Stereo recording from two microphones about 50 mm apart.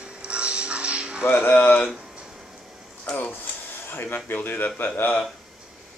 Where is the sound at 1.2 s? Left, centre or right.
Left.